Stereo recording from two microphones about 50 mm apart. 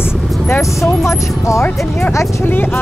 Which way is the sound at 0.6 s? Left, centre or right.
Left.